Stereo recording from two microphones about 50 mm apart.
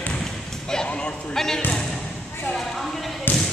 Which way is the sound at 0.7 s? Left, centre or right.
Centre.